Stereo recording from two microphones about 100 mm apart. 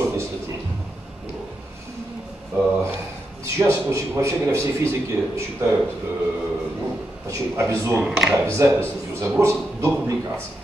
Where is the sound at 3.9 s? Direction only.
30° right (ahead or behind).